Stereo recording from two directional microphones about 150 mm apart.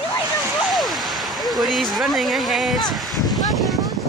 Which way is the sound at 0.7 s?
Centre (ahead or behind).